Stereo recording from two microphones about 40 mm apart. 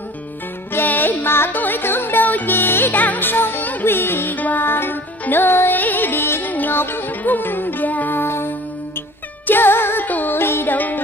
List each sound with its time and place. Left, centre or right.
0.8 s music: left
1.5 s music: left
2.2 s music: left
2.5 s music: left
4.4 s music: left
5.7 s music: left
6.4 s music: left
6.8 s music: left
8.2 s music: left
10.0 s music: left
10.3 s music: left
10.7 s music: left